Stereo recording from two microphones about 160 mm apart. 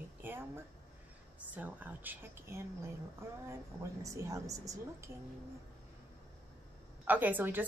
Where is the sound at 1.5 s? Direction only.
10° right (ahead or behind).